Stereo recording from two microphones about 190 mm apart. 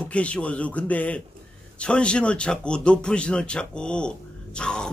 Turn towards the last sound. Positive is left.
turn(degrees=5)  # may be behind; listen again after turning